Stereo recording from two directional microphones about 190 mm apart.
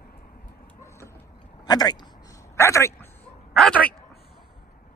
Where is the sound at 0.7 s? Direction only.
15° left (ahead or behind).